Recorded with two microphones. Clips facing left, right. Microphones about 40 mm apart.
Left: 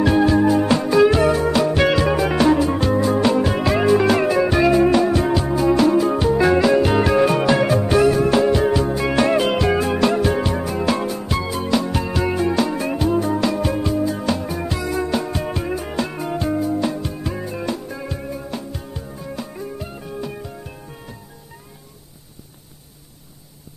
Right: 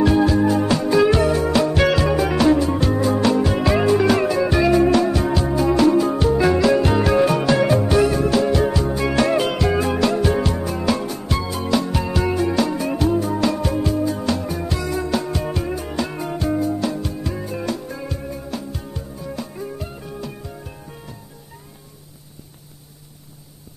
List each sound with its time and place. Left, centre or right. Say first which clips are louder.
0.2 s music: left 2 dB; centre
8.3 s music: left 2 dB; left
8.5 s music: left 2 dB; centre
17.5 s music: even; centre